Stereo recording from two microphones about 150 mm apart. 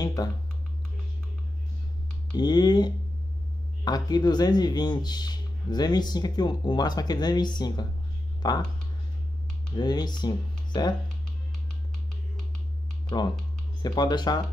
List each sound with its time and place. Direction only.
0.0 s computer keyboard: 25° left (ahead or behind)
2.3 s speech: 25° left (ahead or behind)
9.8 s speech: 30° left (ahead or behind)
13.8 s speech: 30° left (ahead or behind)